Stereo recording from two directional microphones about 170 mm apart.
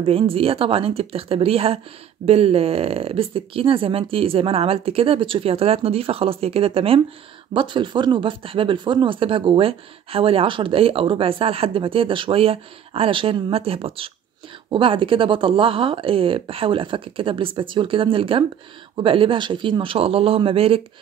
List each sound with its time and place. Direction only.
0.0 s speech: 35° right (ahead or behind)